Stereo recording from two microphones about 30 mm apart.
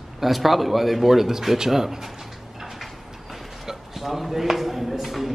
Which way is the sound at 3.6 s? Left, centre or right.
Centre.